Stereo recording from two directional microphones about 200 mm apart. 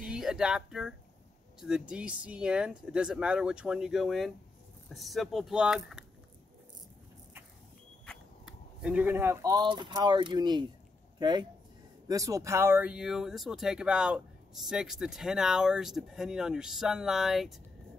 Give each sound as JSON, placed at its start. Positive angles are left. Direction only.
{"t": 0.0, "sound": "speech", "side_deg": -5}
{"t": 8.0, "sound": "speech", "side_deg": 0}